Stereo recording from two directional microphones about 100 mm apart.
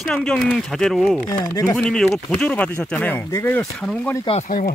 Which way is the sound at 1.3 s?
35° left (ahead or behind).